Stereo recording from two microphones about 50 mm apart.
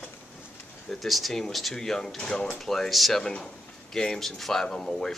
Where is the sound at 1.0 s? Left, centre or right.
Centre.